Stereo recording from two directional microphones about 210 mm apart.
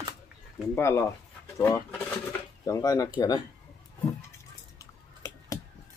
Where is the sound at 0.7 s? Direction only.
10° left (ahead or behind).